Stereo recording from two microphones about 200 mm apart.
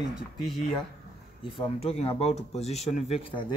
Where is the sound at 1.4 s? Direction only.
30° left (ahead or behind).